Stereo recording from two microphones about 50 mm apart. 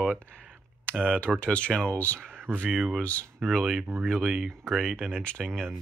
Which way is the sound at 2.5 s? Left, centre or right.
Centre.